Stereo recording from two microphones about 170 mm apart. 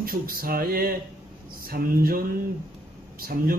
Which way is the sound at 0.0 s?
60° right (ahead or behind).